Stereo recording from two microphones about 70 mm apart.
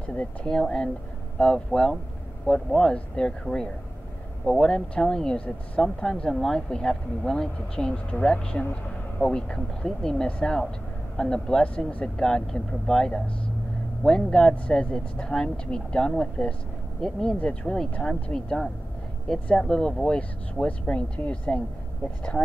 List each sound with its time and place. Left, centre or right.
0.0 s speech: centre